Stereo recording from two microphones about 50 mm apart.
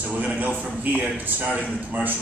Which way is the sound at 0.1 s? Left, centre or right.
Right.